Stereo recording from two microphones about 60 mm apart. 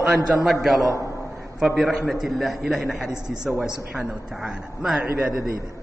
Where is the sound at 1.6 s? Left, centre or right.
Centre.